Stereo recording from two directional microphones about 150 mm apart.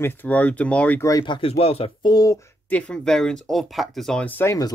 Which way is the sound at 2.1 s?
25° left (ahead or behind).